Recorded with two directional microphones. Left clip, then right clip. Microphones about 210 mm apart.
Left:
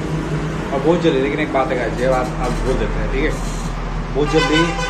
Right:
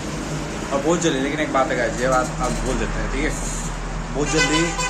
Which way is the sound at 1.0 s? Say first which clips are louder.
Left 4 dB; 15° right (ahead or behind).